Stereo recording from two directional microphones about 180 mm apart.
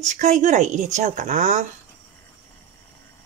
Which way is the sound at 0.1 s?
40° right (ahead or behind).